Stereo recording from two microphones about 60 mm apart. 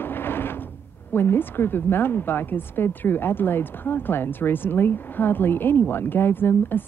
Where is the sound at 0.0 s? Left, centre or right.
Left.